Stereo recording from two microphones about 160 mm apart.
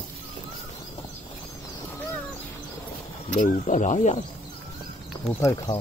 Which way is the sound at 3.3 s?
55° left (ahead or behind).